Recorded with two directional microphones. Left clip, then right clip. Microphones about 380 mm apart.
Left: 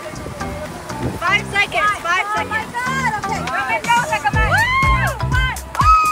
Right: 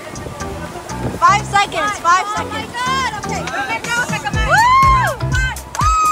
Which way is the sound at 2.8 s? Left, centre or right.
Centre.